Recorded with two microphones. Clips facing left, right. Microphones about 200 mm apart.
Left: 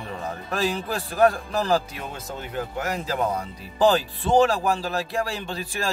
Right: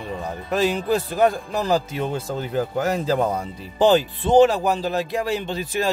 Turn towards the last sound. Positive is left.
turn(degrees=-20)  # may be behind; listen again after turning